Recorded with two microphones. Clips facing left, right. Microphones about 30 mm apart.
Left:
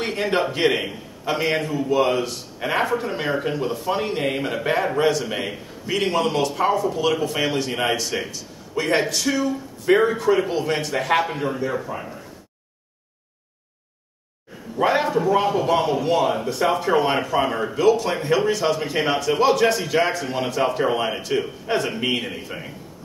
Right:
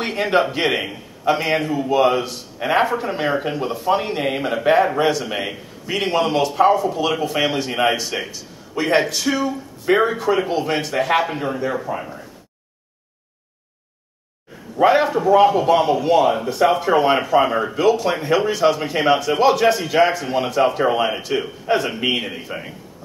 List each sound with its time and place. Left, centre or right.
0.0 s a man's voice: centre
14.8 s speech: centre